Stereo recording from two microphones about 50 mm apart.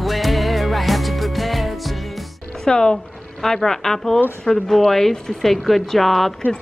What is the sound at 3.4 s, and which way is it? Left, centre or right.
A woman's voice, centre.